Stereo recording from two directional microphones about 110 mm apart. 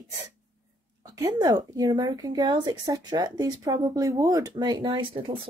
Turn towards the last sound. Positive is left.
turn(degrees=-50)  # may be behind; listen again after turning